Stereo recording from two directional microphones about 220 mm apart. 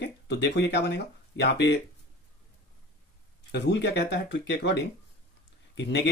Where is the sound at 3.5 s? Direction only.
50° left (ahead or behind).